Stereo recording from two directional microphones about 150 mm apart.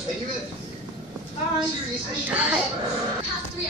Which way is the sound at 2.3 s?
10° right (ahead or behind).